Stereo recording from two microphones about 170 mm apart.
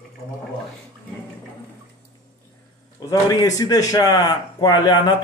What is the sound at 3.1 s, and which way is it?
A man's voice, 20° left (ahead or behind).